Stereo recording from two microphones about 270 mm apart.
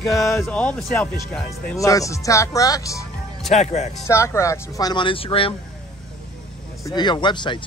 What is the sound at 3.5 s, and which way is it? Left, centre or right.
Speech, left.